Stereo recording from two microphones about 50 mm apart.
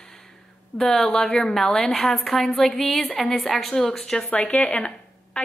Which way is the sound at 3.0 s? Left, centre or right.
Left.